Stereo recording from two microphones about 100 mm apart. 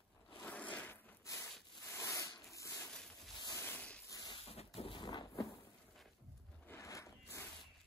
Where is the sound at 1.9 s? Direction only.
30° left (ahead or behind).